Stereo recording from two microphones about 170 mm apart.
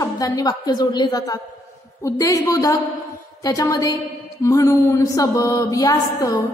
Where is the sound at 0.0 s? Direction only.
20° left (ahead or behind).